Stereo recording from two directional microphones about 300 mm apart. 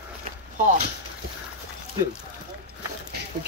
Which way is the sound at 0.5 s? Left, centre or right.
Right.